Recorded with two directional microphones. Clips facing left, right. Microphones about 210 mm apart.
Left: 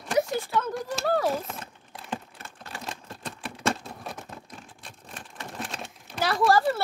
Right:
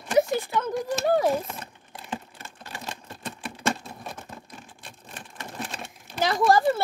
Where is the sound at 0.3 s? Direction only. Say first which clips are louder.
Right 2 dB; 20° right (ahead or behind).